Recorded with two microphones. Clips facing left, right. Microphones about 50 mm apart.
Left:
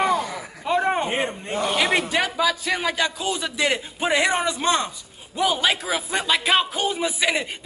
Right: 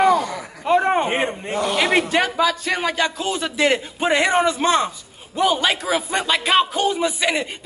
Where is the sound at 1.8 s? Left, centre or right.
Centre.